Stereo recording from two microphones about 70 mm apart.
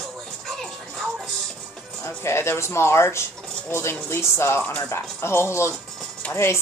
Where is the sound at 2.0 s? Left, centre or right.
Left.